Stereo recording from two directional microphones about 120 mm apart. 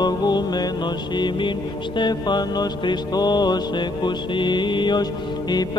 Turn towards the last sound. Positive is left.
turn(degrees=35)  # may be behind; listen again after turning